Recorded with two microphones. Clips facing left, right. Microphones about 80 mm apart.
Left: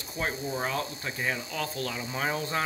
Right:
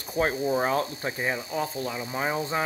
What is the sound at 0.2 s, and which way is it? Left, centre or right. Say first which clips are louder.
Speech: right 7 dB; right.